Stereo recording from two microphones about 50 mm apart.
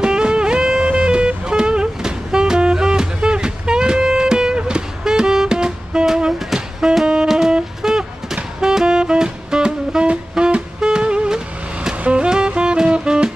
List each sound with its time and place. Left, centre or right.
0.0 s music: centre